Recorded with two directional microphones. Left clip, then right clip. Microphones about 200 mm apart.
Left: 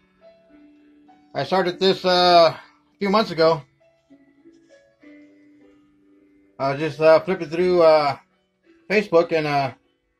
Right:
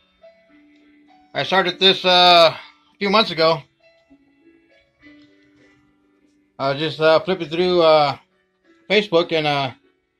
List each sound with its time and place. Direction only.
1.3 s speech: 5° left (ahead or behind)
6.5 s a man's voice: 15° right (ahead or behind)
7.7 s speech: 40° right (ahead or behind)